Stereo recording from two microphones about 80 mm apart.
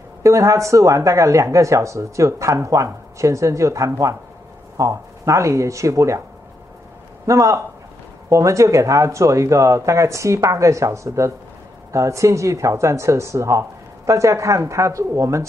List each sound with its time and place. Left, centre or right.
0.2 s speech: right
7.2 s speech: right